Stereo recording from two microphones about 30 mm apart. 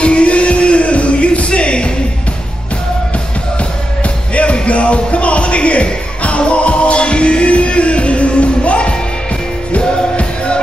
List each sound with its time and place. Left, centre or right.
0.0 s music: left
4.4 s music: left